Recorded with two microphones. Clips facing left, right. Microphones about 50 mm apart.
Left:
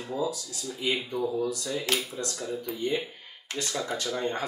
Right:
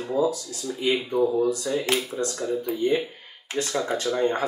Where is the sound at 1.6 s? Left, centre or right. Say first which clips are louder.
Right 5 dB; centre.